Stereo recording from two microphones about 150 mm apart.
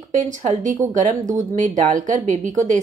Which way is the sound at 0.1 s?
55° right (ahead or behind).